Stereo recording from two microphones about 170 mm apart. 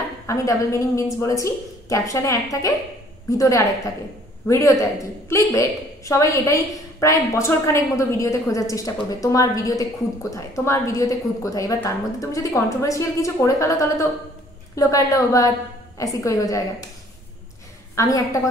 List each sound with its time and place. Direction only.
0.3 s a woman's voice: 20° left (ahead or behind)
17.9 s a woman's voice: 20° left (ahead or behind)